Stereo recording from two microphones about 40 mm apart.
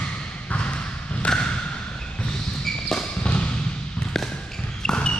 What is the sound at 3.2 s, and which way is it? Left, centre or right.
Music, left.